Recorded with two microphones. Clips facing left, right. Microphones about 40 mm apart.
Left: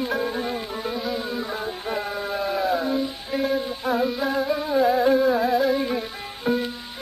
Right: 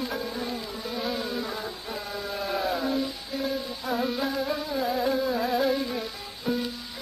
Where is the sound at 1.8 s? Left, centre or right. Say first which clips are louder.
Left 6 dB; left.